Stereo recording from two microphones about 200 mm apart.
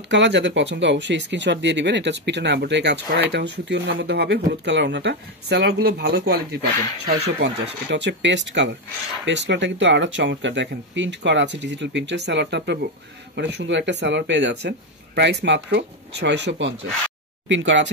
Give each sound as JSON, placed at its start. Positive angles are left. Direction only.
{"t": 0.1, "sound": "speech", "side_deg": -65}